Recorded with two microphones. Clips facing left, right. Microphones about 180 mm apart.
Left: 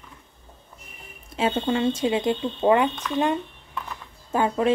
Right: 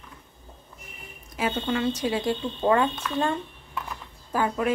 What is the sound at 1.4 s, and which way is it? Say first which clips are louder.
A woman's voice: left 3 dB; 25° left (ahead or behind).